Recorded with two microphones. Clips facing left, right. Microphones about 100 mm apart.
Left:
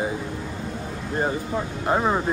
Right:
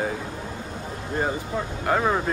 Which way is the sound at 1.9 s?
15° left (ahead or behind).